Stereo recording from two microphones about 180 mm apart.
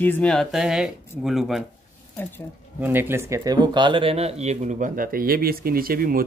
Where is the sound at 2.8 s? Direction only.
10° right (ahead or behind).